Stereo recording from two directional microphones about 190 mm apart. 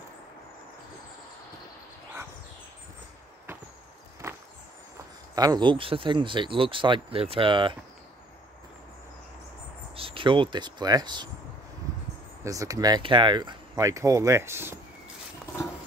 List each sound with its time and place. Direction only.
4.2 s a sound: 15° right (ahead or behind)
5.3 s speech: 20° right (ahead or behind)
9.9 s speech: 25° right (ahead or behind)
12.4 s speech: 15° right (ahead or behind)